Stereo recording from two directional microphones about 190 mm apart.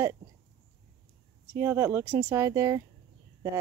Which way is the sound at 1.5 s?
15° right (ahead or behind).